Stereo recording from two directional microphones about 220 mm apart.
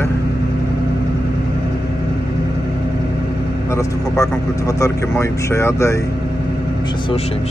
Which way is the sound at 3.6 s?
15° left (ahead or behind).